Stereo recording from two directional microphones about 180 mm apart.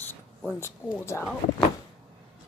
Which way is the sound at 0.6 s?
15° left (ahead or behind).